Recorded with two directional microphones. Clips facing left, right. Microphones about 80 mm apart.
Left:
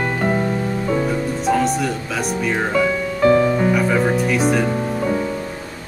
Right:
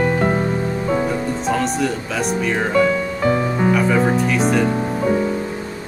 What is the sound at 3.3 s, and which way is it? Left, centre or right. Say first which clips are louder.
Music: left 4 dB; right.